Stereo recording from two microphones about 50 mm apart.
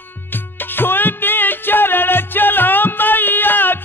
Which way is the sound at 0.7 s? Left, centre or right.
Left.